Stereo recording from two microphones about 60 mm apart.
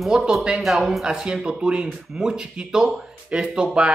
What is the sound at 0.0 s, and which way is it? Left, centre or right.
Speech, centre.